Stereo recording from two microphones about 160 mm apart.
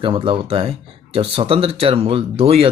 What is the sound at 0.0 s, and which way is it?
Speech, 30° right (ahead or behind).